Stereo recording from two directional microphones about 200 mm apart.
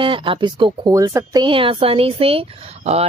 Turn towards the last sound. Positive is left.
turn(degrees=-30)  # may be behind; listen again after turning